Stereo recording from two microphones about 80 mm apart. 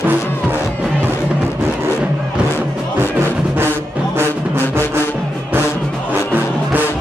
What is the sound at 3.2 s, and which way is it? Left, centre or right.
Music, right.